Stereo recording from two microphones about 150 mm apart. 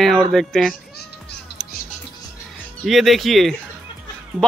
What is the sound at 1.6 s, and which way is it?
Music, 5° right (ahead or behind).